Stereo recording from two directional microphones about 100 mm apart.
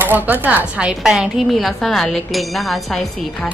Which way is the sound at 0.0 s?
20° right (ahead or behind).